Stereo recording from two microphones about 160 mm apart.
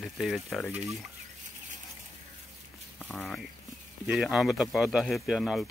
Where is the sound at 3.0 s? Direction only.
5° left (ahead or behind).